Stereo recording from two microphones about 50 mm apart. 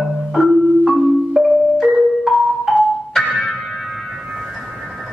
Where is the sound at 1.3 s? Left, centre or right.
Centre.